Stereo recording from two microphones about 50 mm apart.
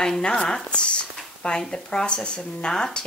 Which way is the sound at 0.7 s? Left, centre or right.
Left.